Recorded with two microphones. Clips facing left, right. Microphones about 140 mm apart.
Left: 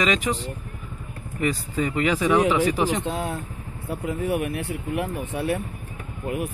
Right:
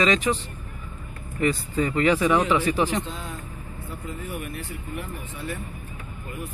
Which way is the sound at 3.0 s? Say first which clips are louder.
Left 8 dB; 60° left (ahead or behind).